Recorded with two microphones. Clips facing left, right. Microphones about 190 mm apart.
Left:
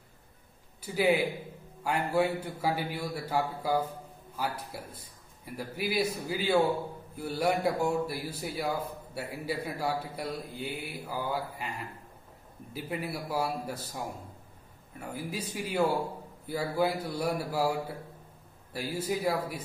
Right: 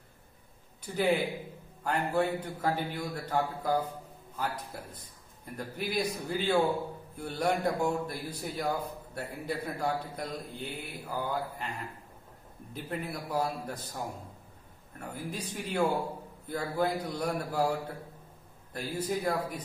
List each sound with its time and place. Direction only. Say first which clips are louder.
0.8 s a man's voice: left 2 dB; 10° left (ahead or behind)
12.7 s a man's voice: left 1 dB; 5° left (ahead or behind)
15.0 s a man's voice: left 2 dB; 5° left (ahead or behind)